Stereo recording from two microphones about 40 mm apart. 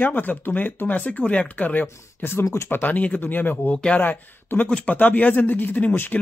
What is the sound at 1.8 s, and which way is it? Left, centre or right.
Speech, left.